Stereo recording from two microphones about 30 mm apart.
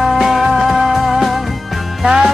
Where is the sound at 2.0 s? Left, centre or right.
Right.